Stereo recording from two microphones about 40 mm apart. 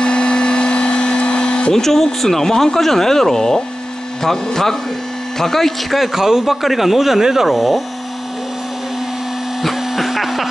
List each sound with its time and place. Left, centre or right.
0.0 s vacuum cleaner: left
1.7 s speech: centre
5.9 s speech: centre
9.6 s a sound: centre